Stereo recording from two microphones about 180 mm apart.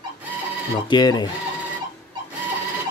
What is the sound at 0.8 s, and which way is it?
Speech, 25° left (ahead or behind).